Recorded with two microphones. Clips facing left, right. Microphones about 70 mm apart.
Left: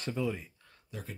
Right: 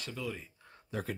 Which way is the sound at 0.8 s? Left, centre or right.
Right.